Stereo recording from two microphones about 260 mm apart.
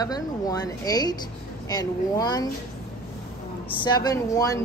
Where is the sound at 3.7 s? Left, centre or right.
Centre.